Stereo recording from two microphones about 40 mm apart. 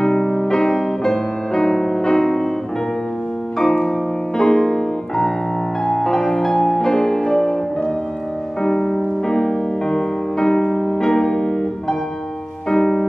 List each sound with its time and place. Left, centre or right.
0.0 s music: centre
3.5 s music: centre
8.6 s music: centre